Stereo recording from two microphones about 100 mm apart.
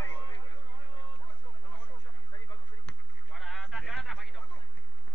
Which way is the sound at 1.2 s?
15° left (ahead or behind).